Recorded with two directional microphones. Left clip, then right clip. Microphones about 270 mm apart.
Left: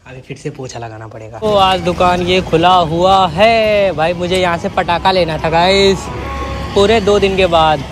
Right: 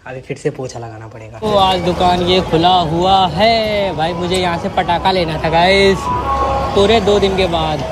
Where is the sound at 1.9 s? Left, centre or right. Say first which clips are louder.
Left 1 dB; centre.